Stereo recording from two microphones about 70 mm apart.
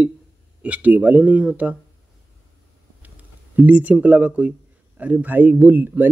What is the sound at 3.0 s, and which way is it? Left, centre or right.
Speech, right.